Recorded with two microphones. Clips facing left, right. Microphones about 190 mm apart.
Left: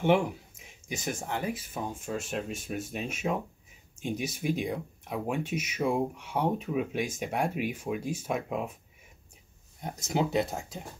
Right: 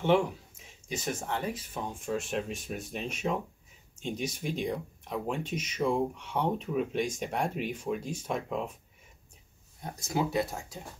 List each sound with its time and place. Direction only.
0.8 s speech: 10° left (ahead or behind)
9.9 s speech: 20° left (ahead or behind)